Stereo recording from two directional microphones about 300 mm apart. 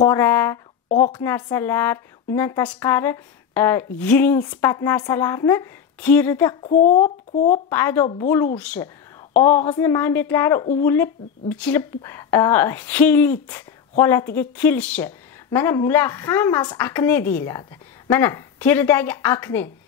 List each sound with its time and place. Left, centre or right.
0.0 s a woman's voice: centre
0.8 s a woman's voice: left
1.1 s a woman's voice: centre
6.6 s speech: left
7.7 s a woman's voice: centre